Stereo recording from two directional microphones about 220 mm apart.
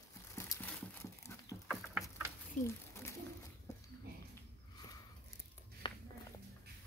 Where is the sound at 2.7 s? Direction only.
10° left (ahead or behind).